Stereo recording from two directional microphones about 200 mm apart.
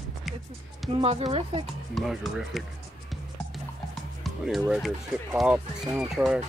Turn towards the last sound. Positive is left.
turn(degrees=0)  # may be behind; listen again after turning